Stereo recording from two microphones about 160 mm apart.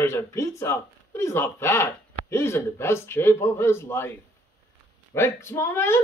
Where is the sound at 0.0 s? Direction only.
15° left (ahead or behind).